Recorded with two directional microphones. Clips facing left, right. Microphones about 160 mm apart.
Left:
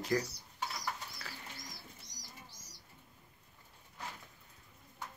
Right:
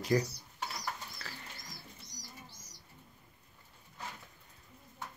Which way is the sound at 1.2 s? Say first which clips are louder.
Right 1 dB; 10° left (ahead or behind).